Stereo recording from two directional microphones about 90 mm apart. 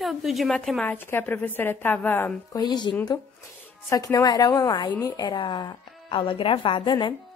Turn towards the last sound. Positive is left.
turn(degrees=60)  # may be behind; listen again after turning